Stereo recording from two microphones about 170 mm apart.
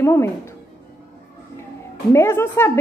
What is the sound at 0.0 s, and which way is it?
Speech, 15° left (ahead or behind).